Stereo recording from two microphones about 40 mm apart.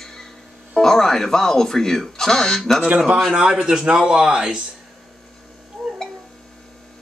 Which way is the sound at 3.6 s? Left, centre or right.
Centre.